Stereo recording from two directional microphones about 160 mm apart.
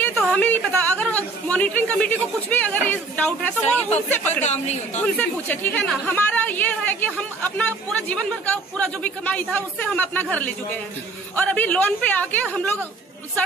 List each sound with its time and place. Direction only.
0.0 s chatter: 5° left (ahead or behind)
4.4 s a woman's voice: 45° left (ahead or behind)
5.0 s a woman's voice: 10° left (ahead or behind)